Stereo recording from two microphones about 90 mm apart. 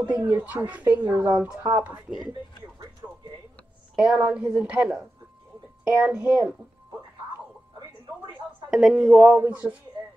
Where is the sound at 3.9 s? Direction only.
5° right (ahead or behind).